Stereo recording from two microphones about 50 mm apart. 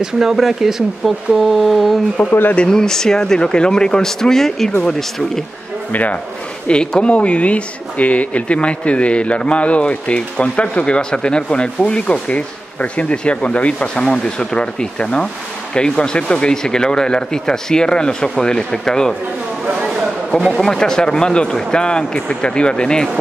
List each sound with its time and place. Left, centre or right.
0.0 s speech: centre
2.2 s a man's voice: left
5.9 s speech: left
6.7 s a man's voice: centre
19.7 s a sound: centre
20.3 s a man's voice: centre